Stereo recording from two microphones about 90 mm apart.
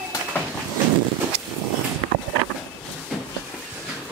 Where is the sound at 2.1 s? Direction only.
70° right (ahead or behind).